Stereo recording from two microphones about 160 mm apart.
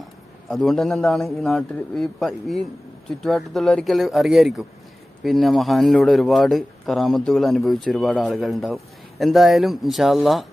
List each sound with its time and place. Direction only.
0.5 s a man's voice: centre (ahead or behind)